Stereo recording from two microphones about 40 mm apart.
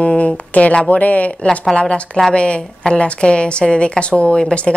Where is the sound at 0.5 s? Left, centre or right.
Left.